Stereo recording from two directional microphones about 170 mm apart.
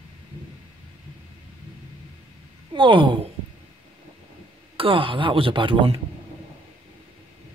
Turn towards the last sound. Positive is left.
turn(degrees=-30)  # may be behind; listen again after turning